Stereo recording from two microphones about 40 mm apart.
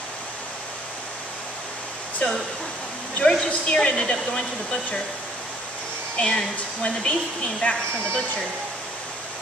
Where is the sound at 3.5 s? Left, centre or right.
Left.